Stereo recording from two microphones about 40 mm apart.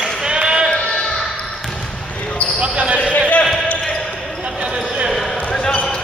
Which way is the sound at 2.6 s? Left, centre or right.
Right.